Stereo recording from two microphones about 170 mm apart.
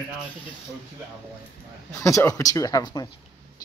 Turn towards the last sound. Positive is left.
turn(degrees=25)  # may be behind; listen again after turning